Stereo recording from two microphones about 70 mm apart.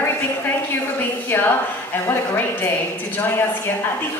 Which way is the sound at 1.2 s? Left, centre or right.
Left.